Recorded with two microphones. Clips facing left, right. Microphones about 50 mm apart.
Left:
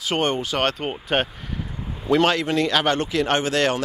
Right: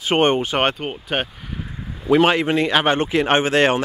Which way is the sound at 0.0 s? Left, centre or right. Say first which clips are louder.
Right 5 dB; right.